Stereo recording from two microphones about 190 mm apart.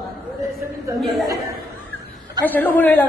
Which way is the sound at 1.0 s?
Centre (ahead or behind).